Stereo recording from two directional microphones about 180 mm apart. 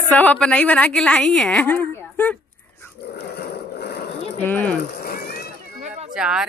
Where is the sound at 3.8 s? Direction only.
65° left (ahead or behind).